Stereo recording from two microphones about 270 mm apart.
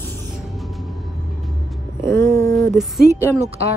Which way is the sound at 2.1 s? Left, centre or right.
Centre.